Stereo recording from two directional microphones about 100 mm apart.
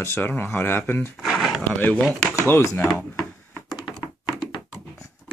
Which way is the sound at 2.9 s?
Centre (ahead or behind).